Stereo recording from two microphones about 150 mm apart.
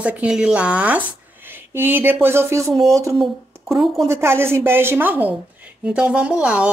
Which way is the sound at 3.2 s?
Centre (ahead or behind).